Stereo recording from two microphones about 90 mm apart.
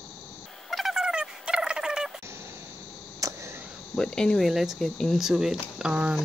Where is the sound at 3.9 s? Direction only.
10° left (ahead or behind).